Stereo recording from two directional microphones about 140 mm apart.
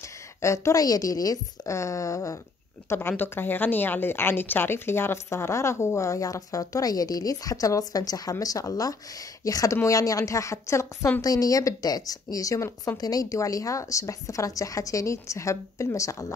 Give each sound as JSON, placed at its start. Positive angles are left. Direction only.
{"t": 0.4, "sound": "a woman's voice", "side_deg": 20}